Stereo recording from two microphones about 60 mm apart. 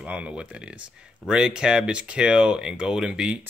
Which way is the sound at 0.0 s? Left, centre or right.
Centre.